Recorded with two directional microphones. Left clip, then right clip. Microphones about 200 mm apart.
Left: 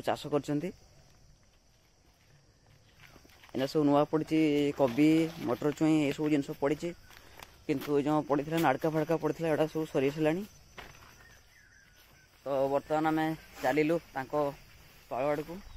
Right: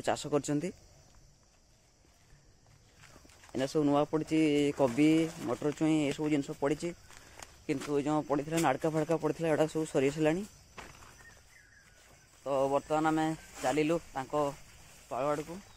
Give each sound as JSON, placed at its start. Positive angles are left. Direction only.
{"t": 0.0, "sound": "speech", "side_deg": -5}
{"t": 3.5, "sound": "speech", "side_deg": 10}
{"t": 7.9, "sound": "speech", "side_deg": 20}
{"t": 10.8, "sound": "horse", "side_deg": -50}
{"t": 12.4, "sound": "speech", "side_deg": 0}
{"t": 13.6, "sound": "speech", "side_deg": 10}